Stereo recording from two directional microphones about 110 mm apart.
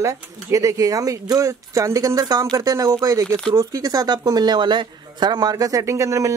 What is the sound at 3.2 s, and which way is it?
Speech, 5° left (ahead or behind).